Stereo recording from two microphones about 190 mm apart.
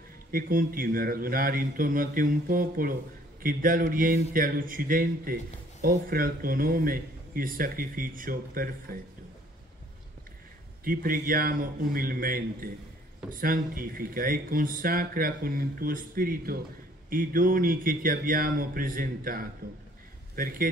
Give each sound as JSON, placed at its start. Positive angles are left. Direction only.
{"t": 0.3, "sound": "speech", "side_deg": -50}
{"t": 10.8, "sound": "speech", "side_deg": -50}